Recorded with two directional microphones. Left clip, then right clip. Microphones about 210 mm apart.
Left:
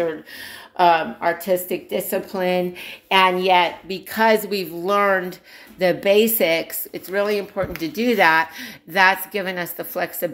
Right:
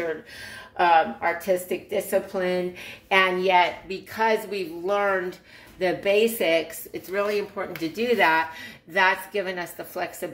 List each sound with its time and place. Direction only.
0.7 s a woman's voice: 40° left (ahead or behind)